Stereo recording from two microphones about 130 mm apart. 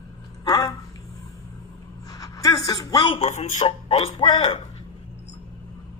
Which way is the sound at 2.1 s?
25° left (ahead or behind).